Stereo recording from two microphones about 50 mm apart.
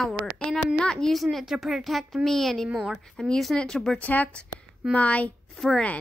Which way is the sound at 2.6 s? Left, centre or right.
Centre.